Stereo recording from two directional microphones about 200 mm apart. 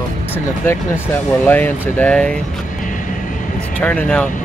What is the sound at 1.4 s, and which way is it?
Speech, 10° left (ahead or behind).